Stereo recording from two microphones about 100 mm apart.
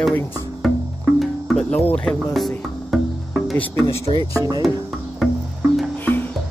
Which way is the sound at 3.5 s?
15° left (ahead or behind).